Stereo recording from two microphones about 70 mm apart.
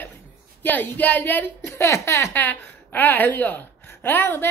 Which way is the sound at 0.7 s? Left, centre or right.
Left.